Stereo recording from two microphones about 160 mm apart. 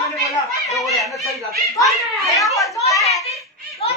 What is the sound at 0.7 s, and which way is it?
Speech, centre (ahead or behind).